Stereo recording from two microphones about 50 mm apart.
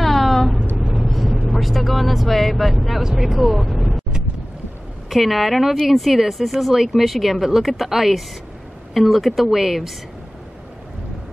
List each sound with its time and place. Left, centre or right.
0.0 s a sound: centre
0.8 s vehicle: centre
1.5 s speech: centre
5.1 s speech: centre